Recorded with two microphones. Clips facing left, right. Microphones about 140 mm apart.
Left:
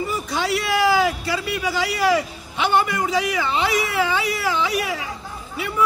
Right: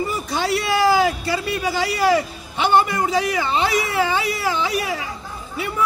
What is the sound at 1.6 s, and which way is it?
A man's voice, 30° right (ahead or behind).